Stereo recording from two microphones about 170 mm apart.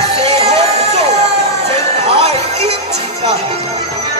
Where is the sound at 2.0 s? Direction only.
35° right (ahead or behind).